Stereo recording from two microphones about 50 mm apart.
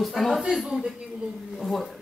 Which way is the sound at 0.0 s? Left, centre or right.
Centre.